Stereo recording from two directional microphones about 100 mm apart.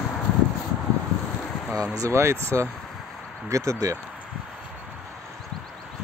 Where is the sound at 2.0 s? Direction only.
30° right (ahead or behind).